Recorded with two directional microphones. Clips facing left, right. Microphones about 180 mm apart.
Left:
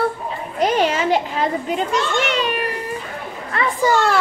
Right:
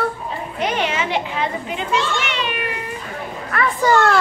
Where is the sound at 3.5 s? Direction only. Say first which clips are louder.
Right 1 dB; 25° left (ahead or behind).